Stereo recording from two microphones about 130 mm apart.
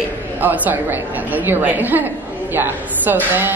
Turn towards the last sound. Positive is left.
turn(degrees=-15)  # may be behind; listen again after turning